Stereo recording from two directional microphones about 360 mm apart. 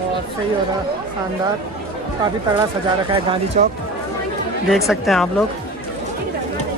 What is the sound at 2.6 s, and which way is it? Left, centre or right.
Speech, centre.